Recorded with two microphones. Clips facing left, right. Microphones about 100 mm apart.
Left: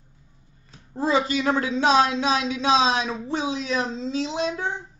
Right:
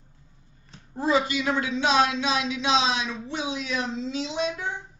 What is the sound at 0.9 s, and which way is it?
A man's voice, 30° left (ahead or behind).